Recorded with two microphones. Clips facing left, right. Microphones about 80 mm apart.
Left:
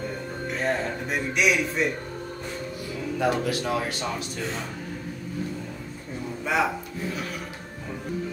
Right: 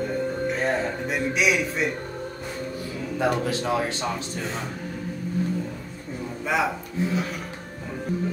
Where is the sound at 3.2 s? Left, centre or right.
Right.